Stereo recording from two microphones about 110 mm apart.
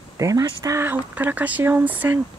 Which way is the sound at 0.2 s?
30° right (ahead or behind).